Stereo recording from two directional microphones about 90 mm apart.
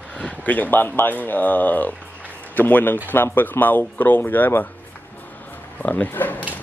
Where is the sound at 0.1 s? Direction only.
15° left (ahead or behind).